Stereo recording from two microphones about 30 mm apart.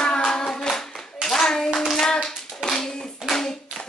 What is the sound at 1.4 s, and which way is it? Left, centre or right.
Hands, left.